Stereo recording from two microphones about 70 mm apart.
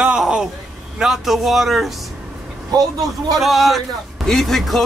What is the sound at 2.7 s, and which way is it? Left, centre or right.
Speech, right.